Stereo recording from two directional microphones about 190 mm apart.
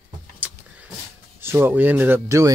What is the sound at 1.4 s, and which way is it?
Speech, 10° right (ahead or behind).